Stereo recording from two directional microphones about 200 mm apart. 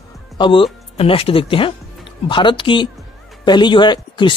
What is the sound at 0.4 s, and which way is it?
Speech, 25° left (ahead or behind).